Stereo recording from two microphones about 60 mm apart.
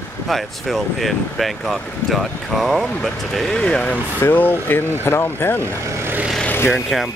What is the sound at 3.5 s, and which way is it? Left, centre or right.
Speech, centre.